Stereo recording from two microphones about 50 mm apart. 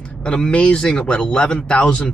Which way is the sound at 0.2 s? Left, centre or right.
Centre.